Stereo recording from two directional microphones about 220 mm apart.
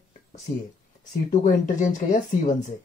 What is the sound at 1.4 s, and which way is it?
Speech, 35° left (ahead or behind).